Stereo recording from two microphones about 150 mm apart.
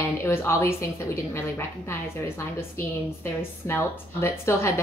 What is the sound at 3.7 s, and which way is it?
A woman's voice, 15° left (ahead or behind).